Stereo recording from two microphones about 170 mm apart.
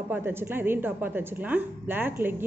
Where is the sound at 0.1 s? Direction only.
15° right (ahead or behind).